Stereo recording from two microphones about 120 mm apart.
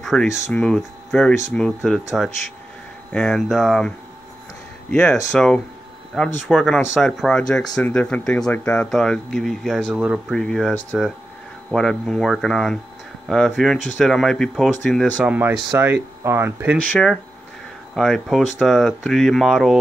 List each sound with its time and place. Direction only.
0.0 s speech: 5° left (ahead or behind)
5.3 s speech: 5° left (ahead or behind)
9.9 s speech: 10° right (ahead or behind)
10.3 s speech: 5° left (ahead or behind)
15.1 s speech: 10° right (ahead or behind)
16.9 s speech: centre (ahead or behind)